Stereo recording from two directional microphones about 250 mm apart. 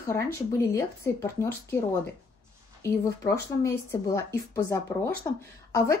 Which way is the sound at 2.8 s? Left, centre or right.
Centre.